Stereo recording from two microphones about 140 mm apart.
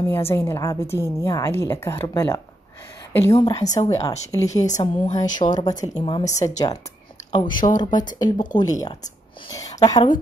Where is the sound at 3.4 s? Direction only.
25° left (ahead or behind).